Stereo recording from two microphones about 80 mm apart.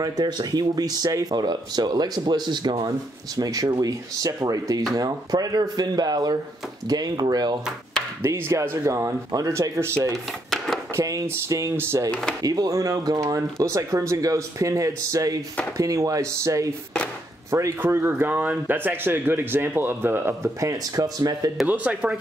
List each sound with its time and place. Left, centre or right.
0.0 s speech: right
3.3 s speech: right
8.2 s speech: right
12.1 s speech: centre
12.4 s speech: right
17.8 s speech: right
20.6 s speech: right
21.6 s speech: centre